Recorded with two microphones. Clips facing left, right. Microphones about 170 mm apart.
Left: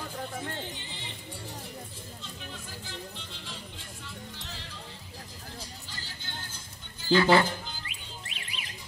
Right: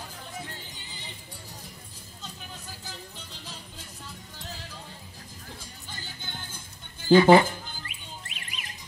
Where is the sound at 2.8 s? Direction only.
40° right (ahead or behind).